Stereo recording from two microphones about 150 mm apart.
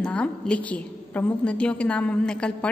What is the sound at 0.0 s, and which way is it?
A woman's voice, 5° left (ahead or behind).